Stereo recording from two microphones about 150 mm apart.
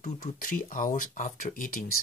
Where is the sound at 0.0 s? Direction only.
65° left (ahead or behind).